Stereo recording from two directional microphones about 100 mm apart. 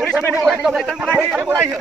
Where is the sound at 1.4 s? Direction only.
25° right (ahead or behind).